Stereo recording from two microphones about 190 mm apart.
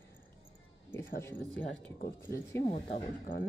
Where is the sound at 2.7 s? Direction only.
25° left (ahead or behind).